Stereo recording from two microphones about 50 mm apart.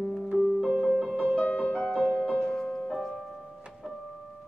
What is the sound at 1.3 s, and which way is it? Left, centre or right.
Music, left.